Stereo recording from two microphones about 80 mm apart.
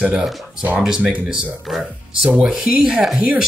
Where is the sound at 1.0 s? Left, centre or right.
Centre.